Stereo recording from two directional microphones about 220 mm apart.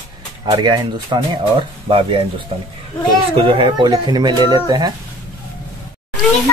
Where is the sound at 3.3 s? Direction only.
25° right (ahead or behind).